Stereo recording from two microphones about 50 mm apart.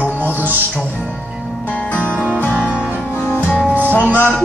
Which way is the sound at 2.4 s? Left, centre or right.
Left.